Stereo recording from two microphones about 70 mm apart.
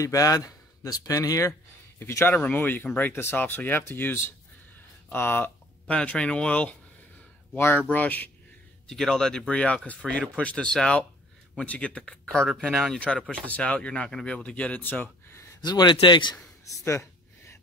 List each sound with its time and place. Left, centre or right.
0.0 s speech: left
2.0 s speech: left
2.3 s speech: left
5.9 s speech: centre
7.5 s speech: left
7.9 s speech: left
8.8 s speech: centre
12.6 s speech: centre
13.0 s speech: centre
15.6 s speech: left
16.7 s a sound: left